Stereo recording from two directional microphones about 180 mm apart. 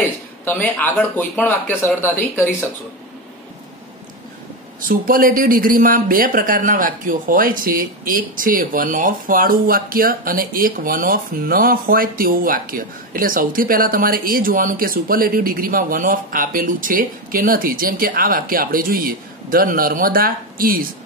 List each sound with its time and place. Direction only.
0.5 s speech: 10° left (ahead or behind)
4.8 s speech: 50° right (ahead or behind)